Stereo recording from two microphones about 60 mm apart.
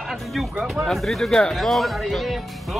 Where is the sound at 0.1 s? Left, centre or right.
Centre.